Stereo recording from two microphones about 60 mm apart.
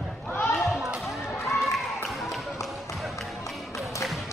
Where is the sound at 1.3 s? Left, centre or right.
Left.